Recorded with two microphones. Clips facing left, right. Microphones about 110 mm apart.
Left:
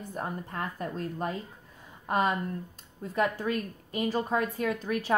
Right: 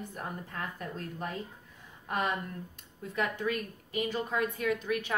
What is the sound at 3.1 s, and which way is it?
A woman's voice, 35° left (ahead or behind).